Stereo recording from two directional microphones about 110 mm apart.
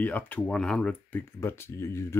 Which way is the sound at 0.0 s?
15° left (ahead or behind).